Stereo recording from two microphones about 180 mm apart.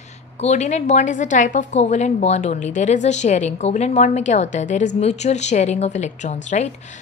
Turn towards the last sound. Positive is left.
turn(degrees=40)  # may be behind; listen again after turning